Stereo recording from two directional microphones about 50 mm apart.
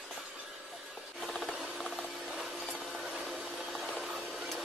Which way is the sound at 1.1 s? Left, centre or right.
Centre.